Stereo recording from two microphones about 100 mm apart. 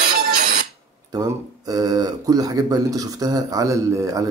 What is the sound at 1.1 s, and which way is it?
Speech, 40° right (ahead or behind).